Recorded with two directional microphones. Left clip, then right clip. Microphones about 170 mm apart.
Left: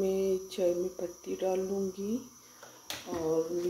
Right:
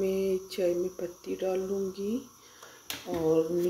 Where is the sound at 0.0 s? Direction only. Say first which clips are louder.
Right 1 dB; 10° right (ahead or behind).